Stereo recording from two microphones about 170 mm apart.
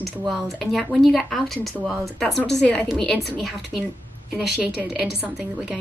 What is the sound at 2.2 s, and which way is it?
A woman's voice, 5° left (ahead or behind).